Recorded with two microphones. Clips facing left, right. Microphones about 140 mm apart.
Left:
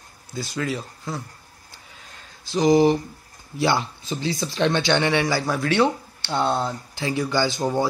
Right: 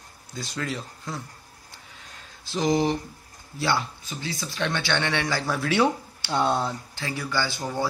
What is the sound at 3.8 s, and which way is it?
A man's voice, 30° left (ahead or behind).